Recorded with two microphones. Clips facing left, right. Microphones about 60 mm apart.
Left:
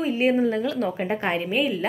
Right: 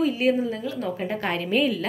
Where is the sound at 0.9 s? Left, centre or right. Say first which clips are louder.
Left 2 dB; left.